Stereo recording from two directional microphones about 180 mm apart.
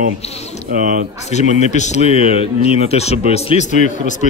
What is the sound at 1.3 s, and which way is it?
Speech, 40° left (ahead or behind).